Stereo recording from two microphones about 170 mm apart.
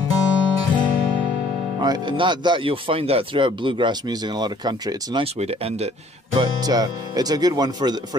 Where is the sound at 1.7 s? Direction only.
25° right (ahead or behind).